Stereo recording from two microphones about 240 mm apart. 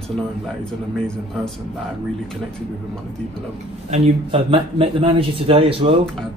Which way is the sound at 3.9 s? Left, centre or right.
Right.